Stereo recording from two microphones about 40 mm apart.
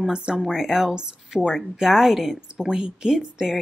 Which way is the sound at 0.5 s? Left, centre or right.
Centre.